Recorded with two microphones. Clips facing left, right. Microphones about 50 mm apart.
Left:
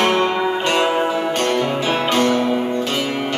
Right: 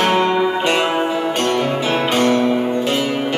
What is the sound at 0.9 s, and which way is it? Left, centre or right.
Music, centre.